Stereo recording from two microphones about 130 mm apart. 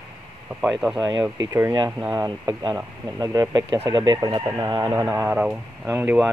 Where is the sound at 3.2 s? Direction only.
25° right (ahead or behind).